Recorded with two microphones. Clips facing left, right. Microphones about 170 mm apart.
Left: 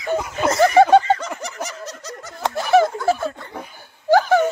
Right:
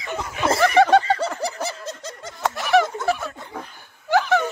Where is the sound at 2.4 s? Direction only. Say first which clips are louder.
Left 3 dB; 30° left (ahead or behind).